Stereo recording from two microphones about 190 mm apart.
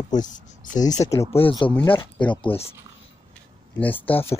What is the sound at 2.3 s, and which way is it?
Speech, 25° left (ahead or behind).